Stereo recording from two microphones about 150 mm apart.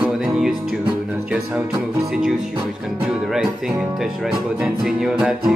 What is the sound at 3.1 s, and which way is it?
Music, 5° right (ahead or behind).